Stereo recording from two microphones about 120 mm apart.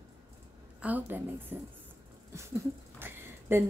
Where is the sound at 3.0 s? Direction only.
20° right (ahead or behind).